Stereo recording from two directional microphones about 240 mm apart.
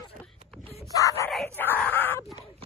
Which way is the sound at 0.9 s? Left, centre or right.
Centre.